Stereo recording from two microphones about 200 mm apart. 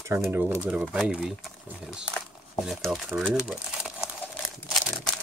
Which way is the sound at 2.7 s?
Centre (ahead or behind).